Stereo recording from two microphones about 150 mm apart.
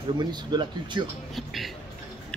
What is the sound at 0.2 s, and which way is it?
Speech, 30° right (ahead or behind).